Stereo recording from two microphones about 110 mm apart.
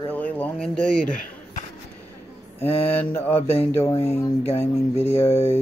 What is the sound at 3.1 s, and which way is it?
Speech, 20° left (ahead or behind).